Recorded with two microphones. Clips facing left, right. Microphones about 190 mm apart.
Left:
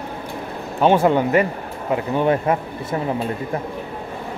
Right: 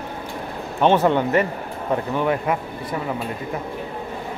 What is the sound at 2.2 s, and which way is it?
Speech, 25° left (ahead or behind).